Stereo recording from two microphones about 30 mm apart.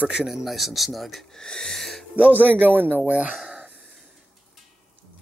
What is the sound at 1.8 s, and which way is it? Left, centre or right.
Owl, centre.